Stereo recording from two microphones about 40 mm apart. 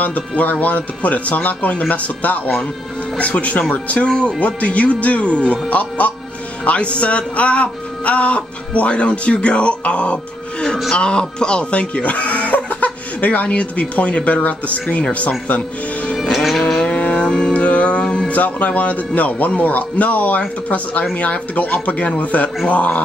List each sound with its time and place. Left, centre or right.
0.4 s speech: left
16.2 s music: centre
16.9 s music: left
18.3 s speech: left